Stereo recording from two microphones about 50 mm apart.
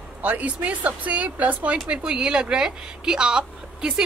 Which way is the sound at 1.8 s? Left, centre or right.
Centre.